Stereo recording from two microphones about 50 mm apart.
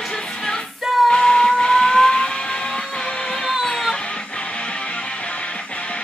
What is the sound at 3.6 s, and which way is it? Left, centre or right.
Music, centre.